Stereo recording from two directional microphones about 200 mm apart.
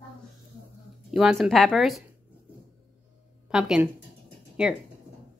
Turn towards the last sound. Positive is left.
turn(degrees=-5)  # may be behind; listen again after turning